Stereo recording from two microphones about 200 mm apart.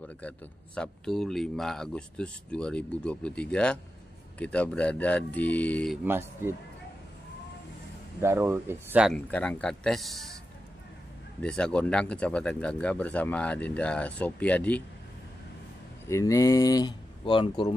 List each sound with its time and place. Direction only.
0.7 s speech: centre (ahead or behind)
6.0 s speech: 10° right (ahead or behind)
8.2 s speech: 15° right (ahead or behind)
9.1 s speech: 5° left (ahead or behind)
11.4 s speech: 5° left (ahead or behind)
16.1 s speech: 15° left (ahead or behind)